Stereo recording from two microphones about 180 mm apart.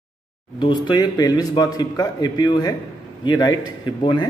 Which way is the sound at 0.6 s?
25° left (ahead or behind).